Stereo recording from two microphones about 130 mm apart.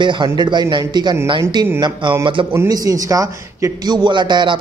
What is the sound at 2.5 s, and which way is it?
A man's voice, 25° right (ahead or behind).